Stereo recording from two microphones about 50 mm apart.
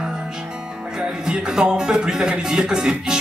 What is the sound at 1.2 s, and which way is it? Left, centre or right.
Speech, centre.